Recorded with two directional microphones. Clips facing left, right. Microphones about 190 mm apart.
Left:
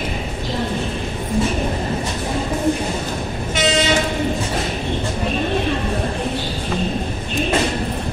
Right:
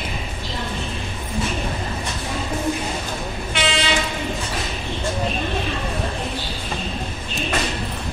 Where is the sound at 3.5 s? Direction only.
40° left (ahead or behind).